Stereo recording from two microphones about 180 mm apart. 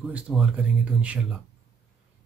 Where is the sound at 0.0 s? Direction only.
5° right (ahead or behind).